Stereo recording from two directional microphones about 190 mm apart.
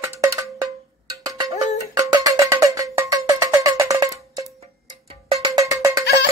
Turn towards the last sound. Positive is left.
turn(degrees=-15)  # may be behind; listen again after turning